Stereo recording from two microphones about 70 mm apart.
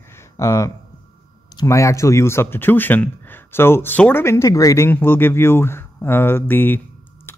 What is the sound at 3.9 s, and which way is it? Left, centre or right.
Speech, left.